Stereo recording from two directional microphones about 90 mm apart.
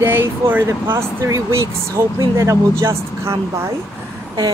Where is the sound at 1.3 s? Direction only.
35° right (ahead or behind).